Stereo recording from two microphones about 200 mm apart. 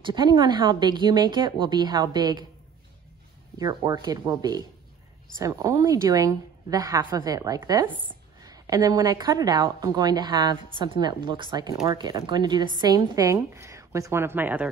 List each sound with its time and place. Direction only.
0.0 s a woman's voice: 25° right (ahead or behind)
3.5 s a woman's voice: 20° right (ahead or behind)